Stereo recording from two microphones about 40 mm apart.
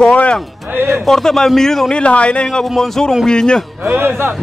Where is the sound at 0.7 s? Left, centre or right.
Right.